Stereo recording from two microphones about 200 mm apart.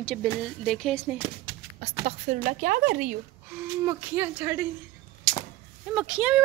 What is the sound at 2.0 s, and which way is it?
Speech, 40° right (ahead or behind).